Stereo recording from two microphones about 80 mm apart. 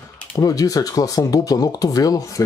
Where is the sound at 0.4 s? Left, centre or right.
Left.